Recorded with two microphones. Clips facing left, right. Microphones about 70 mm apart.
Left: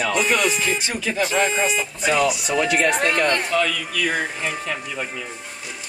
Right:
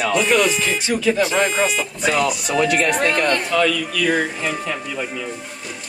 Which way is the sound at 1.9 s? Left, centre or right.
Right.